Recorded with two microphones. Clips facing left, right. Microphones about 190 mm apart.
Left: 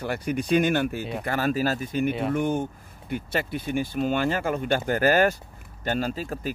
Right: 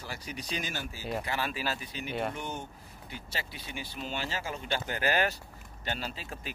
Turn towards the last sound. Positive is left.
turn(degrees=45)  # may be behind; listen again after turning